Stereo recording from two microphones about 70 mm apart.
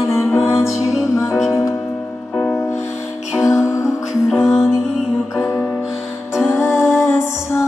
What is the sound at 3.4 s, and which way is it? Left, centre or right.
Music, left.